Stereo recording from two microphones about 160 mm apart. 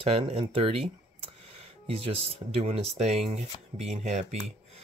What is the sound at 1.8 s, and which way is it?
Speech, 35° right (ahead or behind).